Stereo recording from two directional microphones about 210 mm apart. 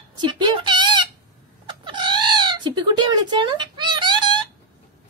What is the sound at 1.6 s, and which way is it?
Cat, 25° right (ahead or behind).